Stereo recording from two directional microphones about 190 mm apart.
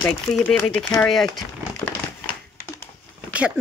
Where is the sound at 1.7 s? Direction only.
15° left (ahead or behind).